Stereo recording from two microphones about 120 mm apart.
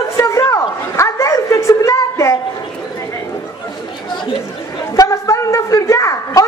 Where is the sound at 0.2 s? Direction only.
25° left (ahead or behind).